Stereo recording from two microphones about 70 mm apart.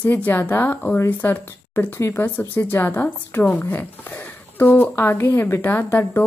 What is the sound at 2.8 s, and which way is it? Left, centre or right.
Speech, left.